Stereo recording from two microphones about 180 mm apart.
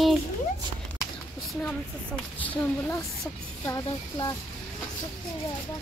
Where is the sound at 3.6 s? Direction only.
20° left (ahead or behind).